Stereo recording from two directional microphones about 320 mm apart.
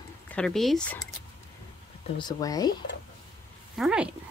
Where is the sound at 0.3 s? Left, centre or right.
Centre.